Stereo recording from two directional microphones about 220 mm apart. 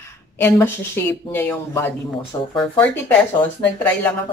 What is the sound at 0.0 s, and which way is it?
Speech, 10° left (ahead or behind).